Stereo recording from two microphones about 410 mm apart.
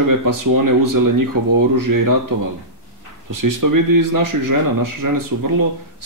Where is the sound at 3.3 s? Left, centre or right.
Right.